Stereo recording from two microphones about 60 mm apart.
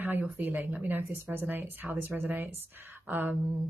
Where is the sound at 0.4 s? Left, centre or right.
Right.